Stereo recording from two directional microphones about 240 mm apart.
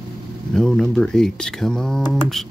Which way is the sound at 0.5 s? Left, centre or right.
Centre.